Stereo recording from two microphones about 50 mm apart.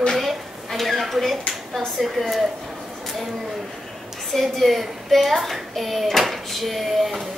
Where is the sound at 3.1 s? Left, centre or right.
Centre.